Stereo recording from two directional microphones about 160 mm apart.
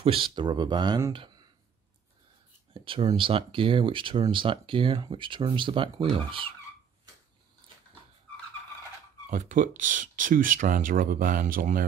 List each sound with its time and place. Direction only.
0.0 s speech: 35° right (ahead or behind)
2.7 s speech: 35° right (ahead or behind)
9.3 s speech: 55° right (ahead or behind)